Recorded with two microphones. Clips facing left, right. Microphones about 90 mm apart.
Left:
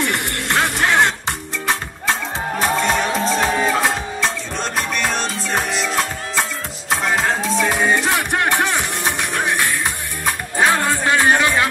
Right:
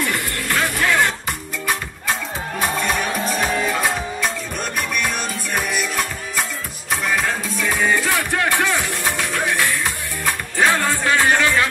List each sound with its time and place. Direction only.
0.0 s music: 25° left (ahead or behind)
2.6 s music: 25° left (ahead or behind)
6.9 s music: 25° left (ahead or behind)